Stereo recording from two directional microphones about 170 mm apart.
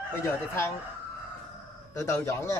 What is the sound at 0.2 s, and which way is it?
Speech, 15° left (ahead or behind).